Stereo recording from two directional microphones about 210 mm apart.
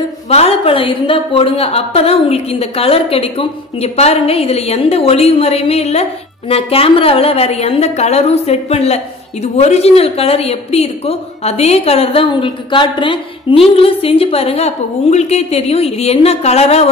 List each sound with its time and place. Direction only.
0.3 s a woman's voice: 30° left (ahead or behind)